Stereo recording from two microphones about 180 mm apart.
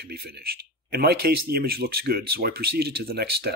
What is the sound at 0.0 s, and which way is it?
Speech, 60° right (ahead or behind).